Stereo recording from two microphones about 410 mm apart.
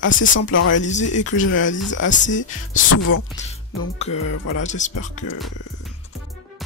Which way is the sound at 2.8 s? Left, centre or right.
Left.